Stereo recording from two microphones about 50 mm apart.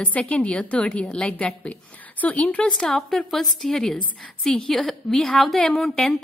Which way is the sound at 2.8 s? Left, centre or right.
Centre.